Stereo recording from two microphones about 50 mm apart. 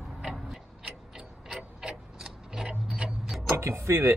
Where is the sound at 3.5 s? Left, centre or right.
Right.